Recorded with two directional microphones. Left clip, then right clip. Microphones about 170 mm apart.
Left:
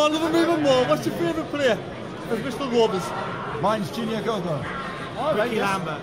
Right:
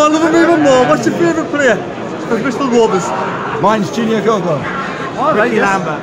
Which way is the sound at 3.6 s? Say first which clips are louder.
Right 11 dB; 20° right (ahead or behind).